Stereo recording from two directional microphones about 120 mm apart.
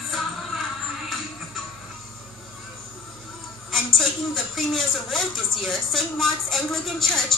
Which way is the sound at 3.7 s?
Centre (ahead or behind).